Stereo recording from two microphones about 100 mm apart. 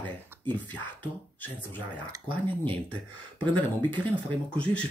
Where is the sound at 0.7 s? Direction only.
15° left (ahead or behind).